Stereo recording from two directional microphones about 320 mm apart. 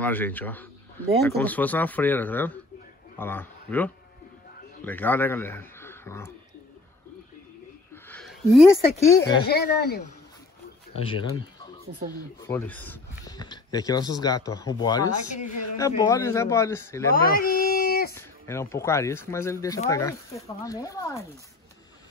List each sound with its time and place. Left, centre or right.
0.0 s a man's voice: centre
7.9 s a sound: centre
9.5 s speech: left
10.9 s speech: centre
12.4 s speech: centre
17.1 s a sound: left
18.1 s speech: centre